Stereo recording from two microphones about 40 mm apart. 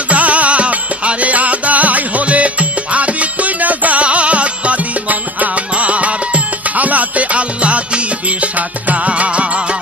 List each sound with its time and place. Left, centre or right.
0.1 s music: right